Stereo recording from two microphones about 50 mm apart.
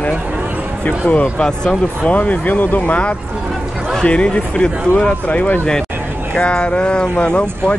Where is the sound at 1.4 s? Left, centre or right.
Centre.